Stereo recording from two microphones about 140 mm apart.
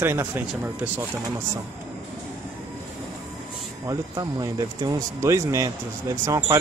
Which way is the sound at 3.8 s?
25° right (ahead or behind).